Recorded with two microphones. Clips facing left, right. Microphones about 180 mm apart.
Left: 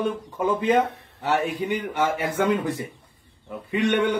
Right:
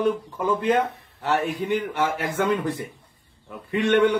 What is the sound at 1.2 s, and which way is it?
A man's voice, centre (ahead or behind).